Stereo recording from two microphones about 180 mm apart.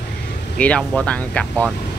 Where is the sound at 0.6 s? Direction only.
5° left (ahead or behind).